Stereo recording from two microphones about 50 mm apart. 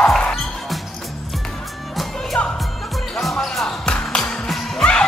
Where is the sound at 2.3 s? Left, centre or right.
Left.